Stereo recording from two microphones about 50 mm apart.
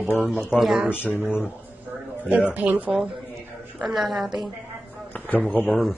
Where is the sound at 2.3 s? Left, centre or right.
Right.